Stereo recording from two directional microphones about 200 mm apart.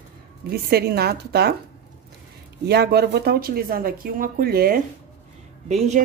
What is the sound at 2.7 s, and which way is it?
Speech, 55° right (ahead or behind).